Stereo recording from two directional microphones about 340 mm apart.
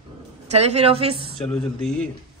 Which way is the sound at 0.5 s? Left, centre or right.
Centre.